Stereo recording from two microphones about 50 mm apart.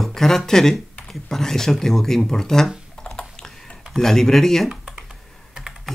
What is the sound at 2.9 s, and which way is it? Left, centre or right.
Typing, centre.